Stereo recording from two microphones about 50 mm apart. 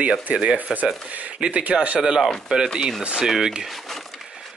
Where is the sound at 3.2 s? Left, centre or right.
Centre.